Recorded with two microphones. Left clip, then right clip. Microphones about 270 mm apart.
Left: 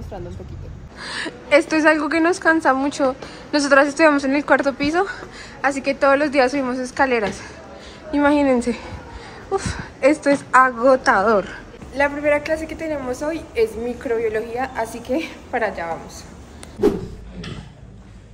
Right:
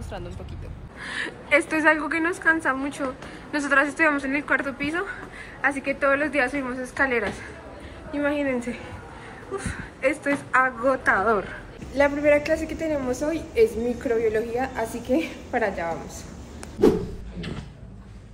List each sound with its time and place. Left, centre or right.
1.2 s a woman's voice: centre
9.9 s a woman's voice: centre